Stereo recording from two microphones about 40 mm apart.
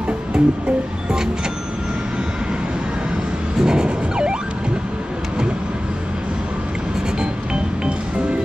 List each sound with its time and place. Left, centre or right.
0.4 s music: centre
3.5 s music: centre
7.2 s music: right